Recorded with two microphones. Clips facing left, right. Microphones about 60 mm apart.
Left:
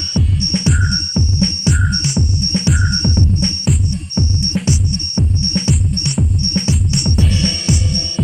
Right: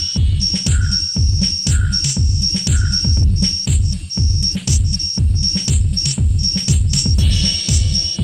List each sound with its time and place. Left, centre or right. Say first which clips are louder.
0.1 s music: left 5 dB; left